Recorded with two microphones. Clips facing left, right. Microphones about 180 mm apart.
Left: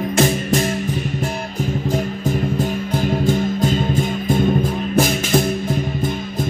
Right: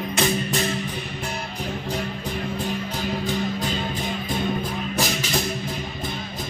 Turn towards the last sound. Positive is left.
turn(degrees=50)  # may be behind; listen again after turning